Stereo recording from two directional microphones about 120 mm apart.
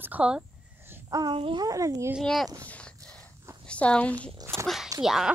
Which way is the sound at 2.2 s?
Centre (ahead or behind).